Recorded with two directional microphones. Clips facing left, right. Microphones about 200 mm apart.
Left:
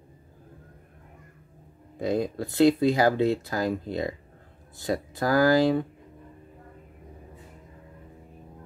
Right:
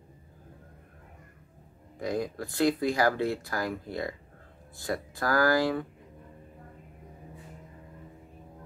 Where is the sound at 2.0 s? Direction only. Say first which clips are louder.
Left 5 dB; 25° left (ahead or behind).